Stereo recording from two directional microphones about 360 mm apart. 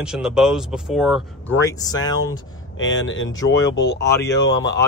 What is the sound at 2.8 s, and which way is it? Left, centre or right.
Speech, left.